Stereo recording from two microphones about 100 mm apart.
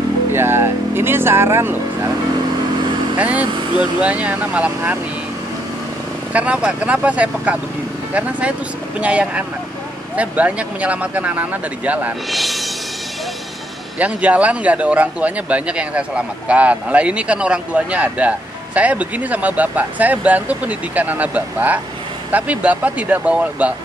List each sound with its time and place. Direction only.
0.3 s vehicle: 25° right (ahead or behind)
3.2 s speech: 15° right (ahead or behind)
6.3 s speech: 10° right (ahead or behind)
12.3 s speech: centre (ahead or behind)
13.9 s speech: 15° right (ahead or behind)